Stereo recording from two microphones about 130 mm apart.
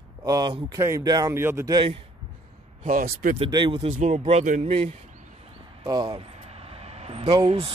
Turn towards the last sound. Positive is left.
turn(degrees=-45)  # may be behind; listen again after turning